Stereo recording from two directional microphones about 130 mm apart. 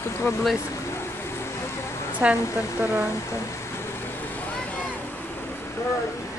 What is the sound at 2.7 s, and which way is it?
Speech, 15° right (ahead or behind).